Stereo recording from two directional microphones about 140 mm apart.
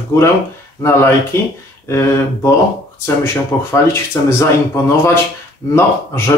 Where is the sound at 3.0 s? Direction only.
15° left (ahead or behind).